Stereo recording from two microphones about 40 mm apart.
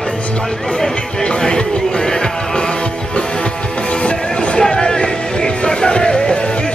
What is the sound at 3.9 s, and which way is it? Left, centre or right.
Music, left.